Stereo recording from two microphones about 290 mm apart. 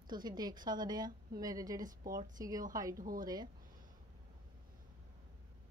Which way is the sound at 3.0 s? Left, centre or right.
Right.